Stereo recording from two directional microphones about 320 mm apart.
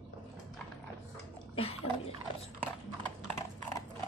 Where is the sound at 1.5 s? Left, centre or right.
Centre.